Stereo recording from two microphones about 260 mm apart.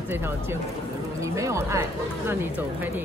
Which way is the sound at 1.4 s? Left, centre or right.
Centre.